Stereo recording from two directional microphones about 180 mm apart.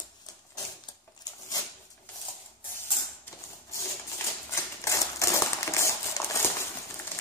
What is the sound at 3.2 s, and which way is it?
Typewriter, 15° left (ahead or behind).